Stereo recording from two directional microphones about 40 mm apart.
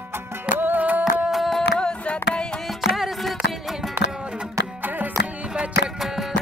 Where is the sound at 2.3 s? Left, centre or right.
Left.